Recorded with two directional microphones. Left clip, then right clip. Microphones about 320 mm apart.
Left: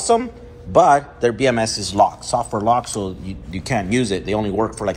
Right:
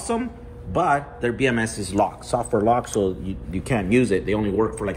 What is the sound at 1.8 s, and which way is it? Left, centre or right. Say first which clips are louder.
A man's voice: left 6 dB; left.